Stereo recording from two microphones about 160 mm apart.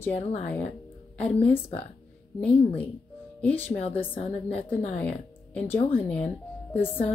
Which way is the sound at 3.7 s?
40° left (ahead or behind).